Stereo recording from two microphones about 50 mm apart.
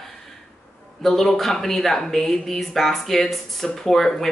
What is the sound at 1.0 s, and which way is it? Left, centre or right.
Speech, centre.